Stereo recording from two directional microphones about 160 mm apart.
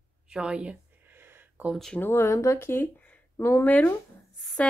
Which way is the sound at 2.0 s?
15° left (ahead or behind).